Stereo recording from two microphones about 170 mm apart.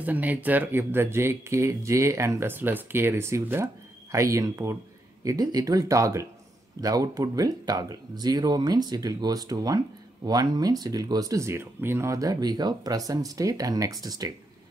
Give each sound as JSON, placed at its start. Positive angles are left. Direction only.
{"t": 0.0, "sound": "speech", "side_deg": -10}